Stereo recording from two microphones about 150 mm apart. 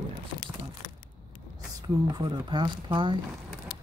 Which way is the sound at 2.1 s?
30° right (ahead or behind).